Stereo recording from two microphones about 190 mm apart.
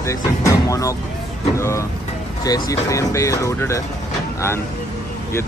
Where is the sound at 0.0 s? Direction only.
15° left (ahead or behind).